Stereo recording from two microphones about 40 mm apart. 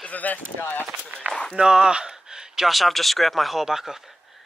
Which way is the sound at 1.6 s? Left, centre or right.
Centre.